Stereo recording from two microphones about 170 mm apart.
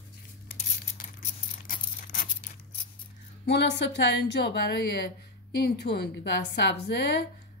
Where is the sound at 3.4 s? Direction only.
90° left.